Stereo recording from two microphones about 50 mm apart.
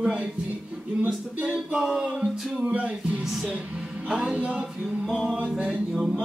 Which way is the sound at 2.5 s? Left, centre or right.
Right.